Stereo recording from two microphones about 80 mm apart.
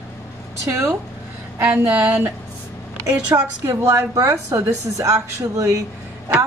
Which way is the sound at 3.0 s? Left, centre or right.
Right.